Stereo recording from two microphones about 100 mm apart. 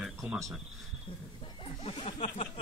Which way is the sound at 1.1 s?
55° left (ahead or behind).